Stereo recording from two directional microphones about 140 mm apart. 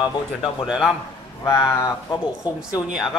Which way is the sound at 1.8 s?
25° left (ahead or behind).